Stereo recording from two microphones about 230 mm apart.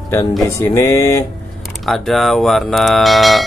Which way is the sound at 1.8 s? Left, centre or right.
Centre.